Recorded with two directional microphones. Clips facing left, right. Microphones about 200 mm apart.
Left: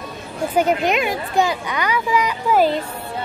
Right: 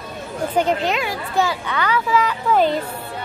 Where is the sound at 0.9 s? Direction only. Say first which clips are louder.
Left 2 dB; 20° left (ahead or behind).